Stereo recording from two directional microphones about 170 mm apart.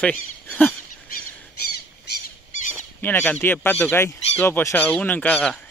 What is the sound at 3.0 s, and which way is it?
Speech, 10° left (ahead or behind).